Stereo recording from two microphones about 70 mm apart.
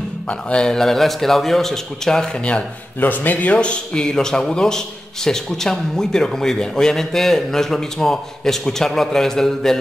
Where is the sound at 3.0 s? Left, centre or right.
Left.